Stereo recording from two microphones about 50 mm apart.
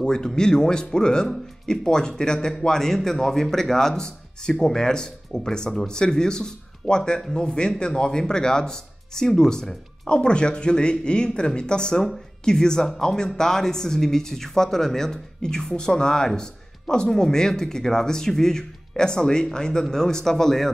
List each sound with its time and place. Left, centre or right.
0.0 s speech: centre